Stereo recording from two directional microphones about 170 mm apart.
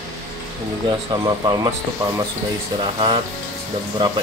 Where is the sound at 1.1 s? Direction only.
25° right (ahead or behind).